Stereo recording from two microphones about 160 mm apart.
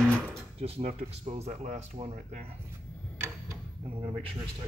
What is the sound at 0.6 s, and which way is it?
Speech, 40° right (ahead or behind).